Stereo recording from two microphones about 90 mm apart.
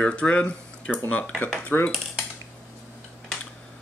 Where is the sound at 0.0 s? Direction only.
10° left (ahead or behind).